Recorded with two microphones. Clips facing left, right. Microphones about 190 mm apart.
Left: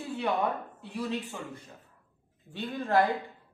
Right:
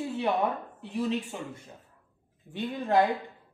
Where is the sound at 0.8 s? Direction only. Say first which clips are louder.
Right 4 dB; 20° right (ahead or behind).